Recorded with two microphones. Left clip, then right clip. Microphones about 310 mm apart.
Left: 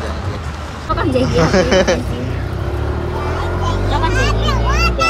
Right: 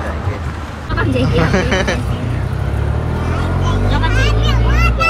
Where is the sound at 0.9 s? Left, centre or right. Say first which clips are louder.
Left 1 dB; centre.